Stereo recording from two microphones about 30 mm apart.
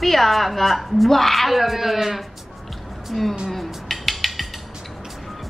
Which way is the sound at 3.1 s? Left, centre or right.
Centre.